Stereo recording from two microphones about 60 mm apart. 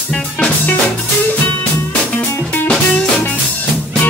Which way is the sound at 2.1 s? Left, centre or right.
Left.